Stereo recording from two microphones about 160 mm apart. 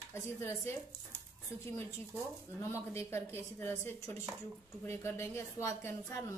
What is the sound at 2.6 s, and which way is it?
A woman's voice, 15° left (ahead or behind).